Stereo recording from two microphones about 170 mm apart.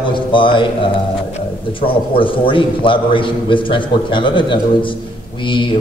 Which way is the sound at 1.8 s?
30° left (ahead or behind).